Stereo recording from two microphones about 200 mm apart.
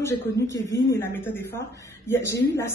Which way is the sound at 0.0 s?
15° left (ahead or behind).